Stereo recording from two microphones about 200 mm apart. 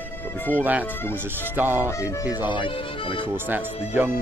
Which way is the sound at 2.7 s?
25° left (ahead or behind).